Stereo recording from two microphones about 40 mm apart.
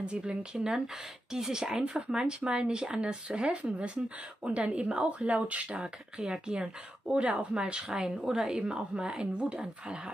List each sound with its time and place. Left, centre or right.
0.0 s speech: right
5.8 s speech: right